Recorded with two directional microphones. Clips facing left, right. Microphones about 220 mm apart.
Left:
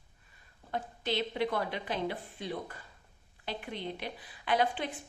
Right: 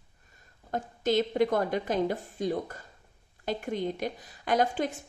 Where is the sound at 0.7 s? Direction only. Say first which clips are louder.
Right 7 dB; 45° right (ahead or behind).